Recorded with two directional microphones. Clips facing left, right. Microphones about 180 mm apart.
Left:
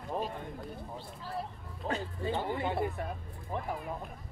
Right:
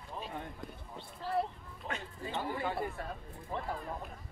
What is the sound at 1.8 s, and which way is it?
Speech, 35° left (ahead or behind).